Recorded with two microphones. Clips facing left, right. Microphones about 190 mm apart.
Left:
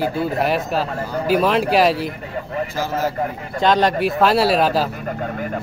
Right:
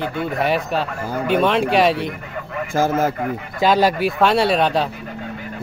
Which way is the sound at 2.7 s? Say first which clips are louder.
Right 7 dB; 50° right (ahead or behind).